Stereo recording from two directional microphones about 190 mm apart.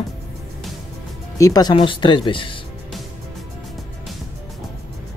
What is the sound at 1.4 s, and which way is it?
Speech, 20° left (ahead or behind).